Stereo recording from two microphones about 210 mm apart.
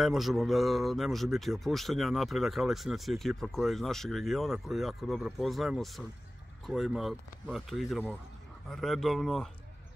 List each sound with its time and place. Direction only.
0.0 s speech: centre (ahead or behind)